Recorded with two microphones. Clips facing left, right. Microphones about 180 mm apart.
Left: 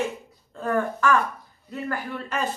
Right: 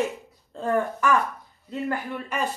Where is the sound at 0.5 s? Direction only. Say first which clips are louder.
Even; 25° right (ahead or behind).